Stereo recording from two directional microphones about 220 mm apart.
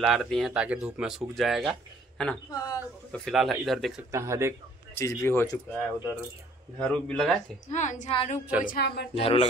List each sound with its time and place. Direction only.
0.0 s speech: centre (ahead or behind)
2.5 s speech: 15° left (ahead or behind)
3.1 s speech: centre (ahead or behind)
4.1 s speech: 15° right (ahead or behind)
4.9 s speech: 10° left (ahead or behind)
7.7 s a woman's voice: 35° left (ahead or behind)
8.6 s speech: 45° left (ahead or behind)
9.1 s speech: 25° left (ahead or behind)